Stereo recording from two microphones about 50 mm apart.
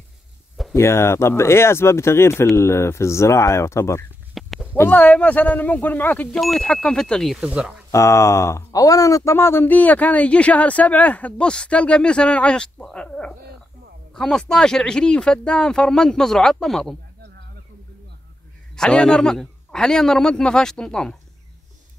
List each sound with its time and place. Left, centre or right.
0.7 s speech: left
4.4 s a sound: centre
4.9 s speech: left
6.3 s speech: centre
6.7 s speech: centre
7.3 s speech: centre
7.9 s speech: left
9.7 s speech: left; by 16.8 s centre
18.8 s speech: centre